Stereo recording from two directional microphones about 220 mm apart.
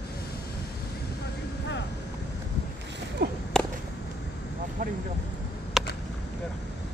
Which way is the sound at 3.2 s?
50° right (ahead or behind).